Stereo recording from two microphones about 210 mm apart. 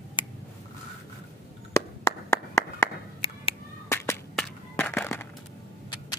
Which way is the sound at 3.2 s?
25° left (ahead or behind).